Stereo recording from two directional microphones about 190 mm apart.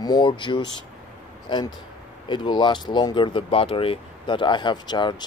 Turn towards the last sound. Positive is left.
turn(degrees=25)  # may be behind; listen again after turning